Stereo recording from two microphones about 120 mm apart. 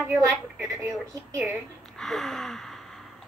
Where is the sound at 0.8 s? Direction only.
20° right (ahead or behind).